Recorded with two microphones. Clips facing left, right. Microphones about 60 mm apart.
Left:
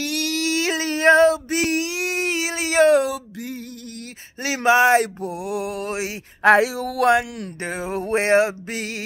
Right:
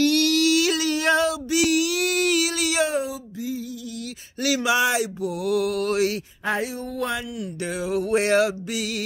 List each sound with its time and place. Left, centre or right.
0.0 s a sound: left
2.9 s a sound: left
4.6 s music: left
5.2 s mantra: left
6.4 s speech: left
7.6 s music: left